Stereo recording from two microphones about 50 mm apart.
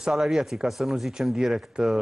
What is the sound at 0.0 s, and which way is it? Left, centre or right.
Speech, centre.